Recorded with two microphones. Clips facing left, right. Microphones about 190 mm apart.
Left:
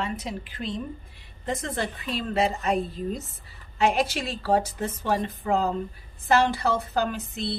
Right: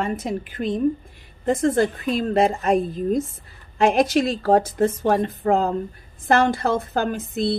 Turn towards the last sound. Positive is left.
turn(degrees=-50)  # may be behind; listen again after turning